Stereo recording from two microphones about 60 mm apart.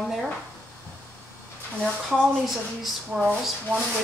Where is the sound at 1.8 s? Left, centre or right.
Centre.